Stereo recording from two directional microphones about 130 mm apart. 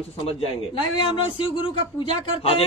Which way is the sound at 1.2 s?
40° left (ahead or behind).